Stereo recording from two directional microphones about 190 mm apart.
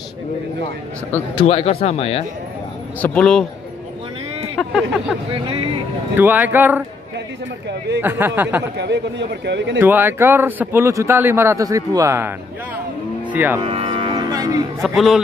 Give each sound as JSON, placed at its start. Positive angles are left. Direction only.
{"t": 1.3, "sound": "speech", "side_deg": 30}
{"t": 3.0, "sound": "speech", "side_deg": 5}
{"t": 4.6, "sound": "speech", "side_deg": 0}
{"t": 5.4, "sound": "speech", "side_deg": -30}
{"t": 6.1, "sound": "a man's voice", "side_deg": -10}
{"t": 8.0, "sound": "a man's voice", "side_deg": -10}
{"t": 8.7, "sound": "a man's voice", "side_deg": -65}
{"t": 9.8, "sound": "a man's voice", "side_deg": -10}
{"t": 13.3, "sound": "speech", "side_deg": -10}
{"t": 13.6, "sound": "cattle", "side_deg": -25}
{"t": 14.8, "sound": "speech", "side_deg": 0}